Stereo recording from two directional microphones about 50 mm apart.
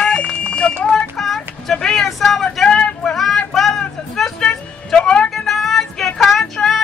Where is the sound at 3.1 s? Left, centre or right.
Centre.